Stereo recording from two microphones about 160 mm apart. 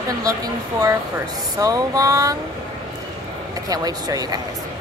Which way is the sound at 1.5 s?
25° right (ahead or behind).